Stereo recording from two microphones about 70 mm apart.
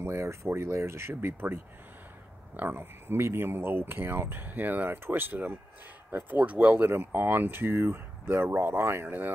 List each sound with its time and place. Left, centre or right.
0.0 s speech: right